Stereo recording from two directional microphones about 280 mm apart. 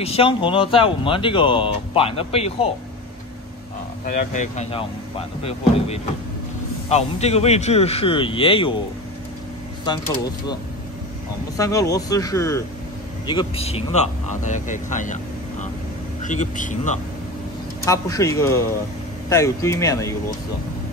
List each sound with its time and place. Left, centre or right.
0.0 s speech: left
4.0 s speech: left
11.5 s speech: centre
16.2 s speech: left
17.8 s speech: centre